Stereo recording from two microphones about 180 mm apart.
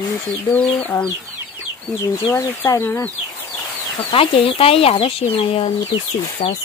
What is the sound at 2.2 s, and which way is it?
Speech, 15° left (ahead or behind).